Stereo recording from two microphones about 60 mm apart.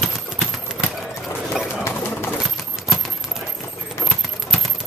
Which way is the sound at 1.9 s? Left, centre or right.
Left.